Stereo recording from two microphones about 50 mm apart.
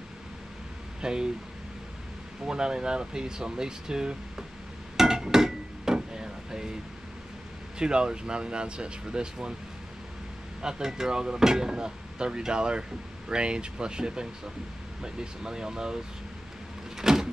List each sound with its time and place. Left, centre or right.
1.0 s speech: centre
2.4 s speech: centre
4.9 s a sound: centre
7.8 s speech: centre
10.6 s speech: centre
16.9 s vehicle: centre